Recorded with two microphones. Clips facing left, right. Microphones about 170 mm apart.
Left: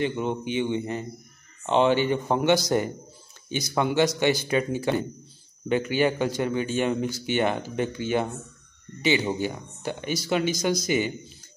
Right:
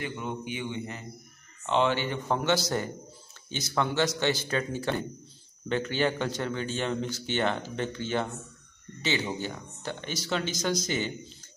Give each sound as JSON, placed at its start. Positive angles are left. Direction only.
{"t": 0.0, "sound": "a man's voice", "side_deg": 25}